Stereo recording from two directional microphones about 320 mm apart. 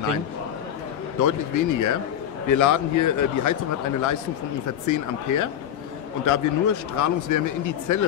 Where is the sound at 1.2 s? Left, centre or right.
Left.